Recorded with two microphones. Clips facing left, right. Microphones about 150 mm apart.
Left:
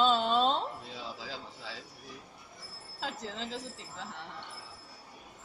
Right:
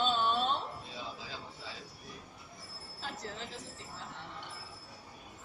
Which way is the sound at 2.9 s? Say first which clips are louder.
Left 4 dB; 90° left.